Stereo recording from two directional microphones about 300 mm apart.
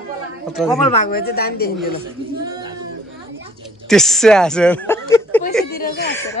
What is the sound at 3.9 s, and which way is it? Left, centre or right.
Speech, centre.